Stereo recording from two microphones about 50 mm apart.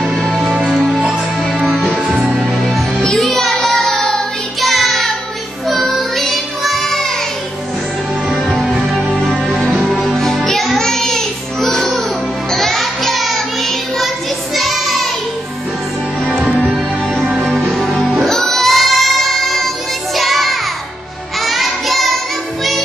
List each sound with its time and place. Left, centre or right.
0.5 s music: centre
1.9 s music: centre
3.2 s music: centre
3.5 s child singing: centre
8.5 s music: centre
12.4 s child singing: centre
17.2 s music: centre
17.7 s music: centre
21.4 s child singing: centre